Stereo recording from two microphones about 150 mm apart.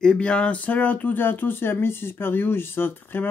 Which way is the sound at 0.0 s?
5° left (ahead or behind).